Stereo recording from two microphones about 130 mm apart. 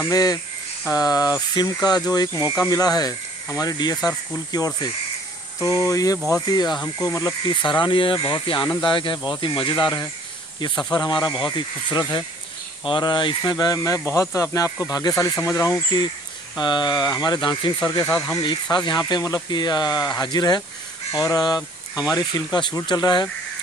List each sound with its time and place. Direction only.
0.1 s speech: 30° left (ahead or behind)